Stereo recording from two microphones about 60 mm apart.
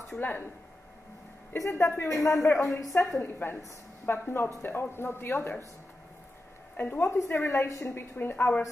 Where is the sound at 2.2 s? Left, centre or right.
Left.